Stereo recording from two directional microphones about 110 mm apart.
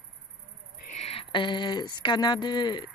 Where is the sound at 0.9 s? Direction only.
70° left (ahead or behind).